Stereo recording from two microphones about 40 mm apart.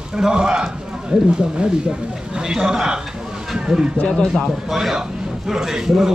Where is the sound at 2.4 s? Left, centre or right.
Centre.